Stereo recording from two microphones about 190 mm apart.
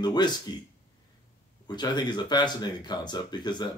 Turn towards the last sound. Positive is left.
turn(degrees=20)  # may be behind; listen again after turning